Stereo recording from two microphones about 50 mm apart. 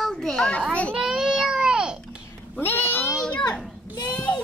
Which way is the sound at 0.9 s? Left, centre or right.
Centre.